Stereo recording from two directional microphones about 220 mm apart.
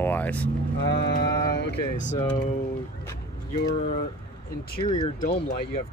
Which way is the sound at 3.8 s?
35° left (ahead or behind).